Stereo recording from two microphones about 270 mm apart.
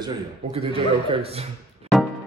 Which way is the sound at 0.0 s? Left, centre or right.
Right.